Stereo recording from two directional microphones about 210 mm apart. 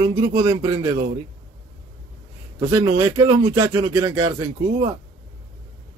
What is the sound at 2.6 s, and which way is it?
Speech, 15° right (ahead or behind).